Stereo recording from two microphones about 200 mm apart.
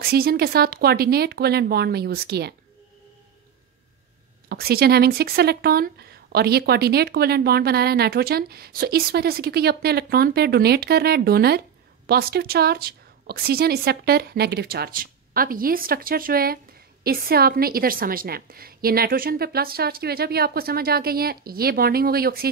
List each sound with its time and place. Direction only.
0.0 s speech: 50° right (ahead or behind)
4.5 s speech: 50° right (ahead or behind)